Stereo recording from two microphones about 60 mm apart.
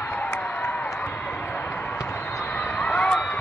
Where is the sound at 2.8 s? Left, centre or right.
Centre.